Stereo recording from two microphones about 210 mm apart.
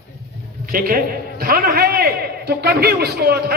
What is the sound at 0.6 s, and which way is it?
A man's voice, 45° right (ahead or behind).